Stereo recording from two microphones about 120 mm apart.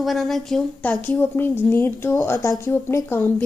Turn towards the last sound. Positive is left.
turn(degrees=20)  # may be behind; listen again after turning